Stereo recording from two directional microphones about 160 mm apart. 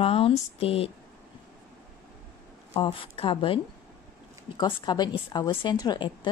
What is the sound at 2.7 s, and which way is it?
A woman's voice, 35° left (ahead or behind).